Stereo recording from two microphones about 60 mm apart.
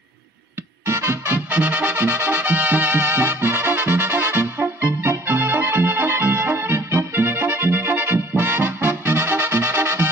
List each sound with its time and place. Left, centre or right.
1.3 s music: right